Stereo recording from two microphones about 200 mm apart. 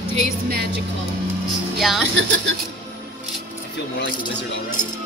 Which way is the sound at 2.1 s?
70° right (ahead or behind).